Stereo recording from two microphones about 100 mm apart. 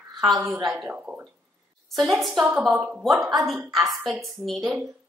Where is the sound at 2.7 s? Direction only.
15° right (ahead or behind).